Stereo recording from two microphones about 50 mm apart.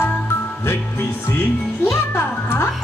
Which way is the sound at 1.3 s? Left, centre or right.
Left.